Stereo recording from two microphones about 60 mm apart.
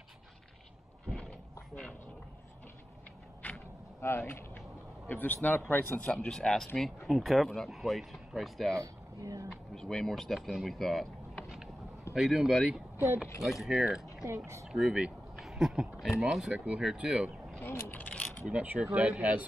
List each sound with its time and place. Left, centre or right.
3.4 s a sound: left
4.0 s speech: left
5.0 s speech: left
6.2 s speech: centre
8.8 s a sound: right
9.8 s speech: centre
14.2 s speech: right
14.7 s speech: centre
15.3 s a sound: centre
16.2 s speech: centre
16.5 s speech: centre
17.6 s speech: left
18.0 s coin: left
18.5 s speech: right